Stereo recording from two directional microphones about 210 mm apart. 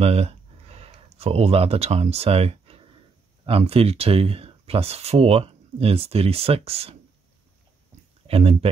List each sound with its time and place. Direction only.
0.0 s speech: 30° right (ahead or behind)
8.3 s speech: 30° right (ahead or behind)